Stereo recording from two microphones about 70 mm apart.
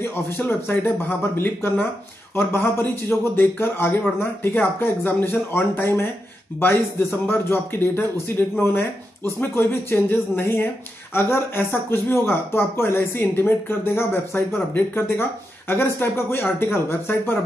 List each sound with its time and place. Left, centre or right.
0.0 s a man's voice: left